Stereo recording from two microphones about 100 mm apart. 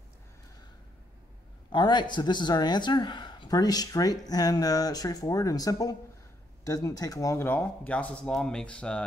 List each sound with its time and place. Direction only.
1.7 s speech: 50° left (ahead or behind)
7.3 s speech: 20° left (ahead or behind)